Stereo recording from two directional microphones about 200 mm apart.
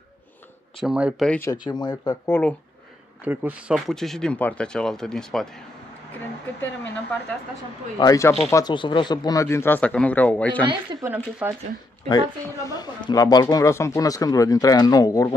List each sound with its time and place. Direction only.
0.7 s speech: 5° right (ahead or behind)
1.3 s speech: 15° left (ahead or behind)
3.3 s speech: 5° right (ahead or behind)
8.0 s speech: 15° left (ahead or behind)
10.6 s speech: 25° right (ahead or behind)
11.4 s speech: 5° right (ahead or behind)
12.1 s speech: 20° left (ahead or behind)